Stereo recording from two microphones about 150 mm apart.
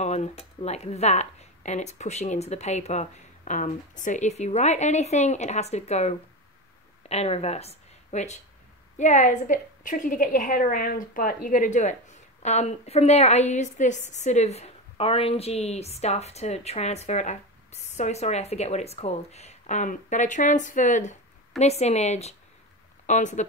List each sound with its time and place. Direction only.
0.0 s a woman's voice: 50° left (ahead or behind)